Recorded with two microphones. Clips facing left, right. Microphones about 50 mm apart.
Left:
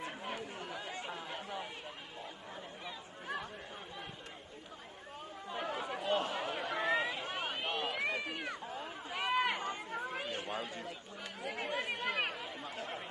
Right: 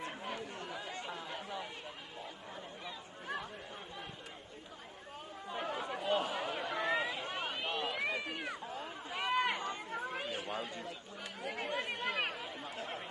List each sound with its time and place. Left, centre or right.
0.0 s chatter: centre
0.4 s chatter: left
0.7 s chatter: centre
5.5 s chatter: centre
7.3 s a sound: left
7.9 s cat: centre
9.7 s chatter: centre